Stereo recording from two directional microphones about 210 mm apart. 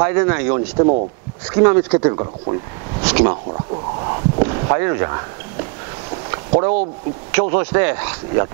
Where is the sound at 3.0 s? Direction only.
10° right (ahead or behind).